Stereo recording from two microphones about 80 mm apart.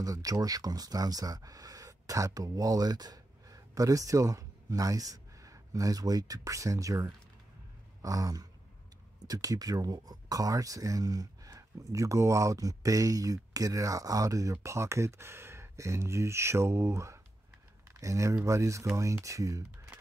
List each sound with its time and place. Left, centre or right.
0.0 s speech: right